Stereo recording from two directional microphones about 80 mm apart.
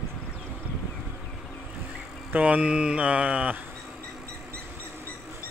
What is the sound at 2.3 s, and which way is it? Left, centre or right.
Speech, centre.